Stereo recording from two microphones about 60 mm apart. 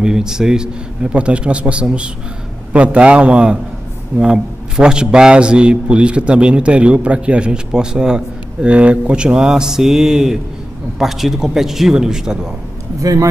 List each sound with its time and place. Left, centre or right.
0.0 s a man's voice: centre
13.0 s speech: right